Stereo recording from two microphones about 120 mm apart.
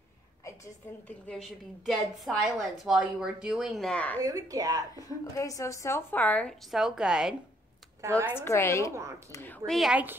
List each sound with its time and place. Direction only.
1.0 s a woman's voice: 10° left (ahead or behind)
4.2 s speech: 30° right (ahead or behind)
5.2 s a woman's voice: 25° left (ahead or behind)
6.7 s a woman's voice: 5° right (ahead or behind)
8.4 s a woman's voice: 20° left (ahead or behind)
9.7 s a woman's voice: centre (ahead or behind)